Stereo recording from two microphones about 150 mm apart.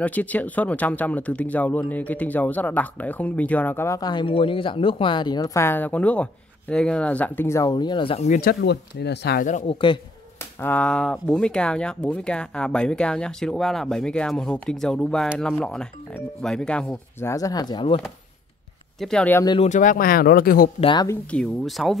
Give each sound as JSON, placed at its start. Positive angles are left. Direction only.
{"t": 0.0, "sound": "speech", "side_deg": 10}
{"t": 8.3, "sound": "speech", "side_deg": 70}
{"t": 9.0, "sound": "speech", "side_deg": 90}
{"t": 9.7, "sound": "speech", "side_deg": 35}
{"t": 10.6, "sound": "speech", "side_deg": 10}
{"t": 17.2, "sound": "speech", "side_deg": 20}
{"t": 18.9, "sound": "speech", "side_deg": 5}
{"t": 19.6, "sound": "speech", "side_deg": 55}
{"t": 20.8, "sound": "speech", "side_deg": 30}
{"t": 21.1, "sound": "speech", "side_deg": 5}